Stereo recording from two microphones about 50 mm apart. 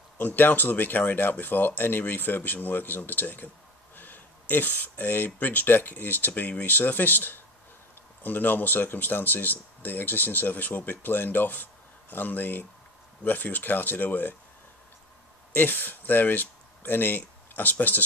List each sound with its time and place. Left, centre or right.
0.2 s speech: left
15.5 s speech: left